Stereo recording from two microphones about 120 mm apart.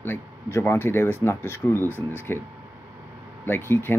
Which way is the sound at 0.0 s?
20° left (ahead or behind).